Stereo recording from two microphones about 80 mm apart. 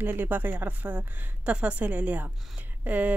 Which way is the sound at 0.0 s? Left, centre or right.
Right.